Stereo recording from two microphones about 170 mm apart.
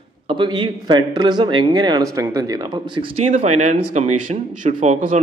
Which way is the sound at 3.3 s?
45° right (ahead or behind).